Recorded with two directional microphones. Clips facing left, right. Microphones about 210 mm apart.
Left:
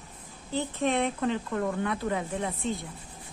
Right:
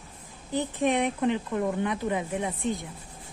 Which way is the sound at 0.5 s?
15° right (ahead or behind).